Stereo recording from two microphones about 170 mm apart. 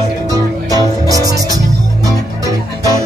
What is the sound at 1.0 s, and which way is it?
Music, 20° right (ahead or behind).